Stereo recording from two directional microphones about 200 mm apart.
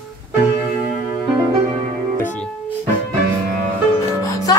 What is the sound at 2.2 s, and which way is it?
Music, 10° left (ahead or behind).